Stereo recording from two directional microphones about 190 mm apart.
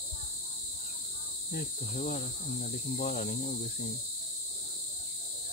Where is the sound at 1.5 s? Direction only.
45° left (ahead or behind).